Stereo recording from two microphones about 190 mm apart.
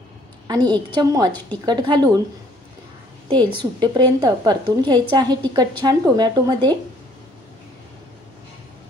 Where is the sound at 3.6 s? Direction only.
25° right (ahead or behind).